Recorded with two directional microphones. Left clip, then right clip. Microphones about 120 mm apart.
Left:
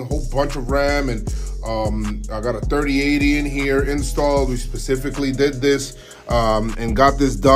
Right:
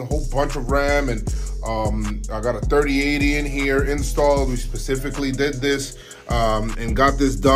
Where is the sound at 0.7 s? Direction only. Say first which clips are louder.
Left 1 dB; 25° left (ahead or behind).